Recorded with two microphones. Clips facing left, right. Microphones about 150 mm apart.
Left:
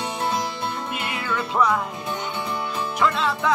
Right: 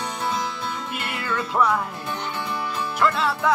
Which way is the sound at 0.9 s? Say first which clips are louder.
Left 1 dB; centre (ahead or behind).